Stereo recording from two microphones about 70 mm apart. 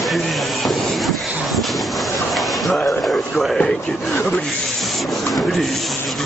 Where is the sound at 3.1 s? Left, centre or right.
Centre.